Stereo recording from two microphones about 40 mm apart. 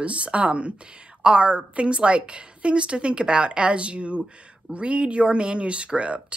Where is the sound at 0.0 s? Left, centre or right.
Right.